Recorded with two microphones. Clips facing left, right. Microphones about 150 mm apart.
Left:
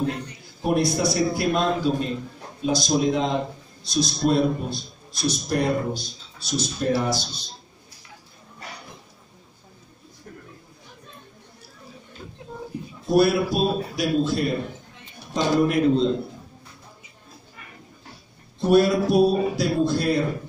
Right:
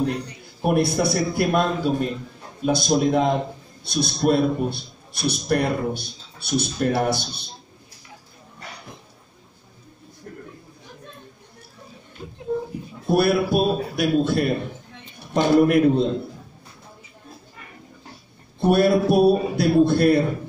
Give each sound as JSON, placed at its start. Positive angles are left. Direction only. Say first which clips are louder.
{"t": 0.6, "sound": "a man's voice", "louder": "right 2 dB", "side_deg": -60}
{"t": 13.1, "sound": "a man's voice", "louder": "even", "side_deg": -55}
{"t": 18.6, "sound": "a man's voice", "louder": "right 1 dB", "side_deg": -55}